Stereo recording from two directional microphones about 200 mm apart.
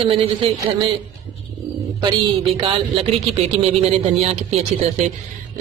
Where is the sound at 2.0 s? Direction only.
25° right (ahead or behind).